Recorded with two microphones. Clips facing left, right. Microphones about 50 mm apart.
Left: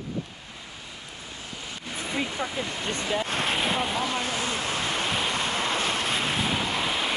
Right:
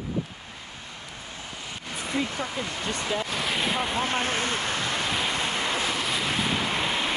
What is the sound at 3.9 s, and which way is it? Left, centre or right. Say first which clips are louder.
Vehicle: right 1 dB; right.